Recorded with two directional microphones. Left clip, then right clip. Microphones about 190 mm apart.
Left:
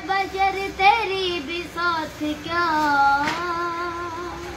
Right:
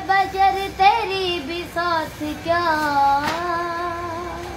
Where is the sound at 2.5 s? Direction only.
10° right (ahead or behind).